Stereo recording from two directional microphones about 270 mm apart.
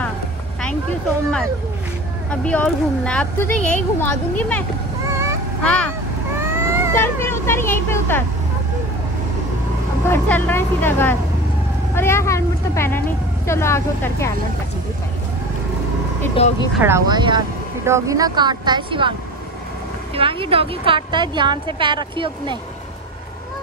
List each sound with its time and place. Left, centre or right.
2.4 s speech: centre
6.6 s cat: centre
7.0 s speech: centre
10.0 s speech: centre
16.3 s speech: left
16.8 s a woman's voice: centre
20.2 s a woman's voice: centre